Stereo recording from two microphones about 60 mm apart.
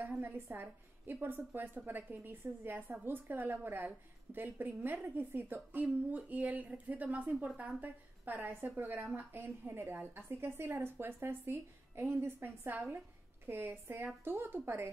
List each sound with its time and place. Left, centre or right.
0.2 s a woman's voice: right